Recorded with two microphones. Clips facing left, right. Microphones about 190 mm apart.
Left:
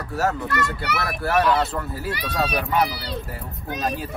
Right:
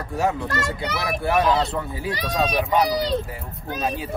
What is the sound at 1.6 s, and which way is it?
Speech, 5° left (ahead or behind).